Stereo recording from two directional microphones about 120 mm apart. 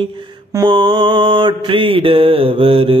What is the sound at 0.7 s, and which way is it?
Mantra, 45° right (ahead or behind).